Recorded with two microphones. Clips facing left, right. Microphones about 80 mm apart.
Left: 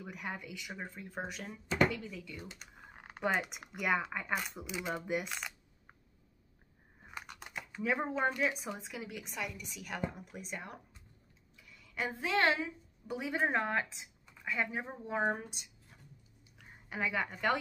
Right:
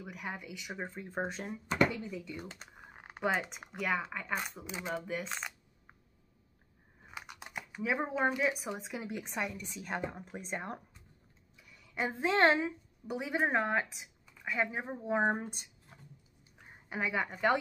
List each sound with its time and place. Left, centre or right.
0.0 s speech: centre; by 1.5 s right
1.9 s speech: centre
2.8 s typing: centre
3.3 s speech: centre
4.6 s speech: right
4.9 s speech: centre
7.1 s speech: centre; by 10.8 s right
11.5 s a sound: centre
12.2 s a woman's voice: right
13.0 s speech: centre
16.5 s a woman's voice: centre